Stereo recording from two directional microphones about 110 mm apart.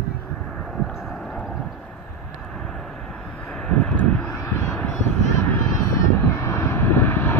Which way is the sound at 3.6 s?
10° left (ahead or behind).